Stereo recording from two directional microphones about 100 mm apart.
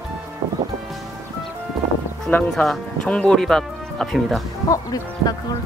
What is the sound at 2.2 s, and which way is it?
Speech, 15° left (ahead or behind).